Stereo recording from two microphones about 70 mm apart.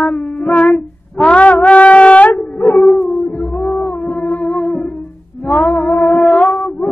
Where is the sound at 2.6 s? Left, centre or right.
Centre.